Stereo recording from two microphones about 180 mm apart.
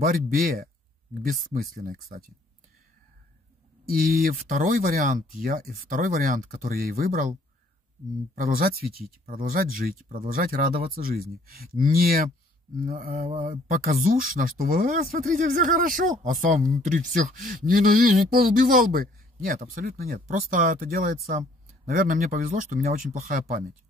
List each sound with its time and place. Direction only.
0.0 s speech: 50° right (ahead or behind)
3.9 s speech: 55° right (ahead or behind)
8.5 s speech: 55° right (ahead or behind)